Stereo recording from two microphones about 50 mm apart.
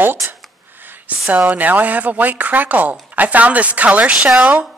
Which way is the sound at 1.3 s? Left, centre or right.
Right.